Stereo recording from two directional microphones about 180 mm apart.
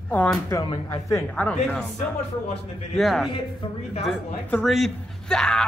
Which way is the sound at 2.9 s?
Centre (ahead or behind).